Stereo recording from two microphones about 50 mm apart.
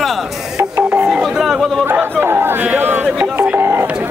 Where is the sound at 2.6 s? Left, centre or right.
Right.